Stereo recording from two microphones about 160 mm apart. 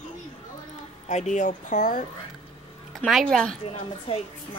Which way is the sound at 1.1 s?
50° left (ahead or behind).